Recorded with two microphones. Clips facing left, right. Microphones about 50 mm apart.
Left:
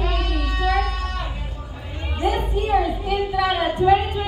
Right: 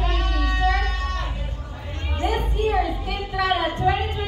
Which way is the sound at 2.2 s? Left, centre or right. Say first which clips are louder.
Left 2 dB; centre.